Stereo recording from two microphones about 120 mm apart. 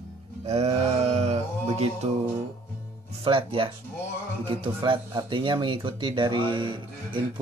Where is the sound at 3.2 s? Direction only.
50° right (ahead or behind).